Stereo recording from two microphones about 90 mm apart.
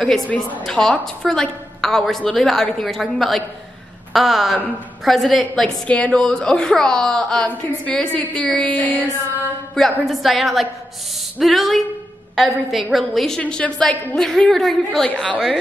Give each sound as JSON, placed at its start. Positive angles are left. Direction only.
{"t": 0.3, "sound": "a woman's voice", "side_deg": 20}
{"t": 5.9, "sound": "a woman's voice", "side_deg": 15}
{"t": 9.8, "sound": "a woman's voice", "side_deg": 0}